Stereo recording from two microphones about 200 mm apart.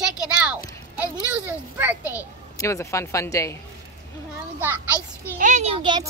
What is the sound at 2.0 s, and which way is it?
Speech, 15° left (ahead or behind).